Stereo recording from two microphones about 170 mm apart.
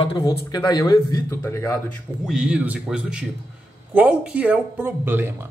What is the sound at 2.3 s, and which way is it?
Speech, 5° right (ahead or behind).